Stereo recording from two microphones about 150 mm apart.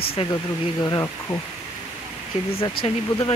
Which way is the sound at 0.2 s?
35° left (ahead or behind).